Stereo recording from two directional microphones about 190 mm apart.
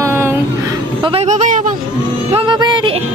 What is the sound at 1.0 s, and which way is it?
Speech, 35° right (ahead or behind).